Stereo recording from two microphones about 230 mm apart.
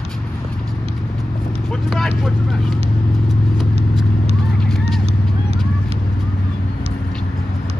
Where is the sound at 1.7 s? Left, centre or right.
Centre.